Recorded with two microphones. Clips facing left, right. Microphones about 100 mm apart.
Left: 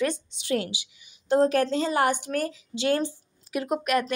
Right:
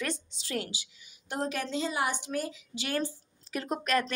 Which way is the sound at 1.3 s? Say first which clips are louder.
Left 12 dB; 40° left (ahead or behind).